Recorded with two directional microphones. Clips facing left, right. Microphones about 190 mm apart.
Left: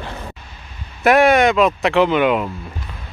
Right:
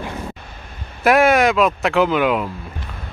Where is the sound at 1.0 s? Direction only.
Centre (ahead or behind).